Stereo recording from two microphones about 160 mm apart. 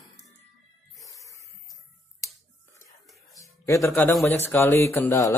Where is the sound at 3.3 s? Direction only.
20° left (ahead or behind).